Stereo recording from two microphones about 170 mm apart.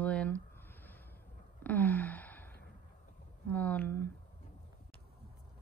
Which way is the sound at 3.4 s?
10° left (ahead or behind).